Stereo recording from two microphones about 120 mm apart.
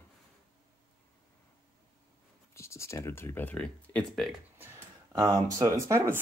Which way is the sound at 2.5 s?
25° left (ahead or behind).